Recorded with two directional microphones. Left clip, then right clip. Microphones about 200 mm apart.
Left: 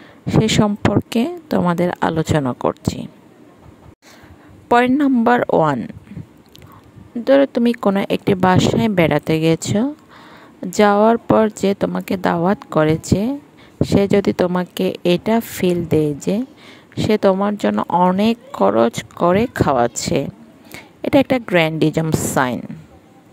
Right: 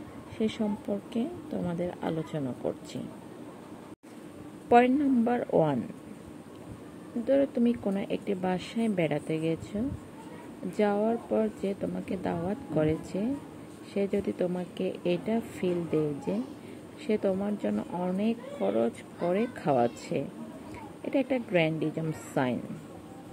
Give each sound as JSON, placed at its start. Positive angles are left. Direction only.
{"t": 0.4, "sound": "speech", "side_deg": 55}
{"t": 4.6, "sound": "speech", "side_deg": 50}
{"t": 7.2, "sound": "a woman's voice", "side_deg": 50}